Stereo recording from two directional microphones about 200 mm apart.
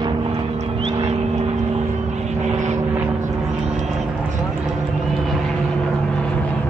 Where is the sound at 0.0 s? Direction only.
25° right (ahead or behind).